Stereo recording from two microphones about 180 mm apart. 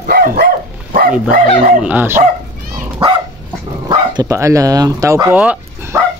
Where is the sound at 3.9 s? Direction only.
20° right (ahead or behind).